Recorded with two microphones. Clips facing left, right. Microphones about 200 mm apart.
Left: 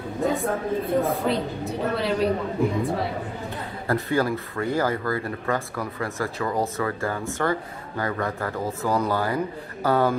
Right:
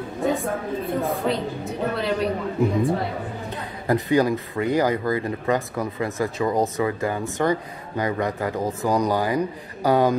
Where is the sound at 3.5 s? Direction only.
15° right (ahead or behind).